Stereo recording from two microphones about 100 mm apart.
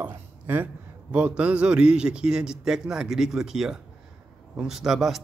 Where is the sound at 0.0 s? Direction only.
20° right (ahead or behind).